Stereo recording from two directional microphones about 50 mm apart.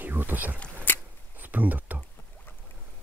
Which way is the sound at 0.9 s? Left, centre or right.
Left.